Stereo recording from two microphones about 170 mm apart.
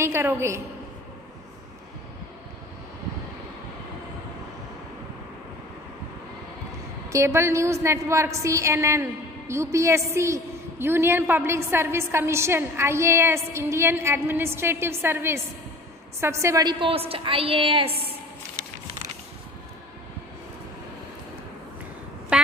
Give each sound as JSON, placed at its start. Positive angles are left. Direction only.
{"t": 0.0, "sound": "a woman's voice", "side_deg": -15}
{"t": 7.1, "sound": "a woman's voice", "side_deg": -15}
{"t": 22.3, "sound": "a sound", "side_deg": -5}